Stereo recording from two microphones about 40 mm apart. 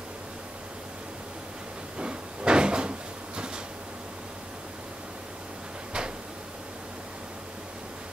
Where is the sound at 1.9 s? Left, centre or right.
Right.